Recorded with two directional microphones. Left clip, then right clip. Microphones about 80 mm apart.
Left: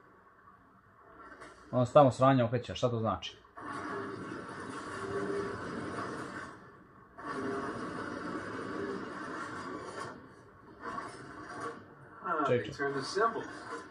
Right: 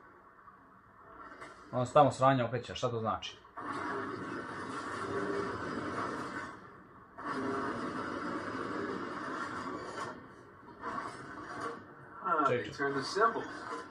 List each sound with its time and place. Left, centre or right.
1.7 s speech: left
3.6 s music: centre
7.2 s a sound: centre
7.7 s vehicle: centre
10.8 s television: centre
12.2 s a sound: centre
12.7 s speech: centre